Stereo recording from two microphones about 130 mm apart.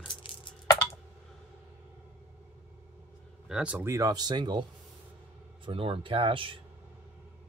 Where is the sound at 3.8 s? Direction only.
25° right (ahead or behind).